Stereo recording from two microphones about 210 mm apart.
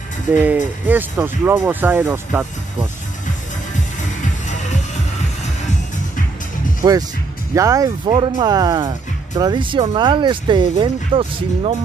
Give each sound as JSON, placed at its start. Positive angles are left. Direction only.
{"t": 0.4, "sound": "speech", "side_deg": -10}
{"t": 6.8, "sound": "speech", "side_deg": -15}